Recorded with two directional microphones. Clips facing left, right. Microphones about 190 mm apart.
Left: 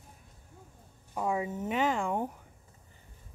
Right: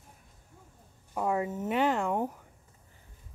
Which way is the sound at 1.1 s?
Centre (ahead or behind).